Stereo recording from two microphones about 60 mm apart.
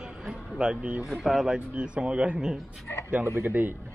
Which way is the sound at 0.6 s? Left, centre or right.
Centre.